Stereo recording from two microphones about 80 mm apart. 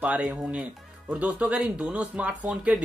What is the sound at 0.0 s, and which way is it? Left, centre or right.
Speech, centre.